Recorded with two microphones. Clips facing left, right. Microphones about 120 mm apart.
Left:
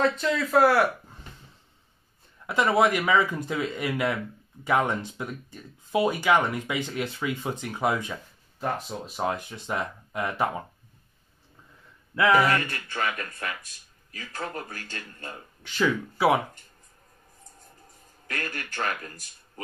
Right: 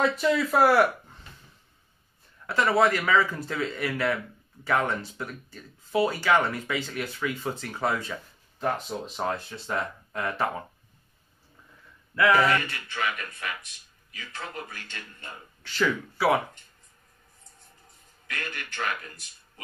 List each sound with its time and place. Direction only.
0.0 s speech: 5° right (ahead or behind)
2.4 s speech: 15° left (ahead or behind)
12.2 s speech: 15° left (ahead or behind)
12.8 s speech: 45° left (ahead or behind)
15.6 s speech: 15° left (ahead or behind)
18.2 s a man's voice: 40° left (ahead or behind)